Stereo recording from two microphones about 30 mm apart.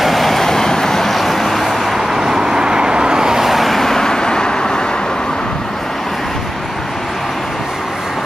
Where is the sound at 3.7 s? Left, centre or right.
Centre.